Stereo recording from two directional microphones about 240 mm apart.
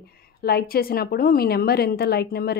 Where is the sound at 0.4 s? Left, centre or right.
Left.